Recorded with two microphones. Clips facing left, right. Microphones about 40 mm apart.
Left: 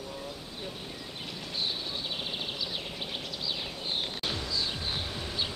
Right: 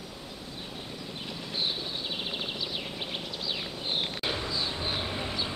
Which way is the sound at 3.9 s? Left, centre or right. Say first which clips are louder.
Right 3 dB; right.